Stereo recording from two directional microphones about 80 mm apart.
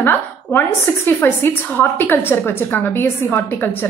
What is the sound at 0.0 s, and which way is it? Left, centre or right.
A woman's voice, left.